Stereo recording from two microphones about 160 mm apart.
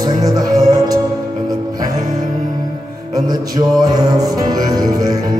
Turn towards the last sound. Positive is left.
turn(degrees=-25)  # may be behind; listen again after turning